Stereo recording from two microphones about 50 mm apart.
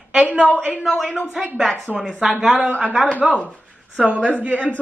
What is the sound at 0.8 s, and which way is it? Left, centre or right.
Speech, centre.